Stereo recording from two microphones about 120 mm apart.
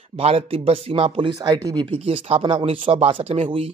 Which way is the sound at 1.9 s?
55° right (ahead or behind).